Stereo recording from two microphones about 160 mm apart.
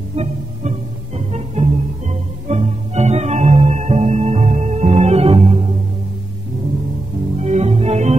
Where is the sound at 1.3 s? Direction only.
45° right (ahead or behind).